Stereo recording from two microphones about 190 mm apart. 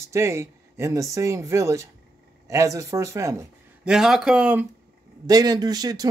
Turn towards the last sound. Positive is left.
turn(degrees=-20)  # may be behind; listen again after turning